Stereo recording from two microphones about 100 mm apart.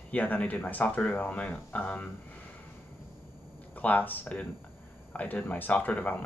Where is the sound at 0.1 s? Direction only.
15° left (ahead or behind).